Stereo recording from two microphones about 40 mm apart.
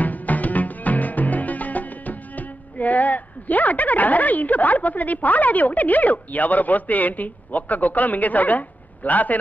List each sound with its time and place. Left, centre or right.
0.0 s music: left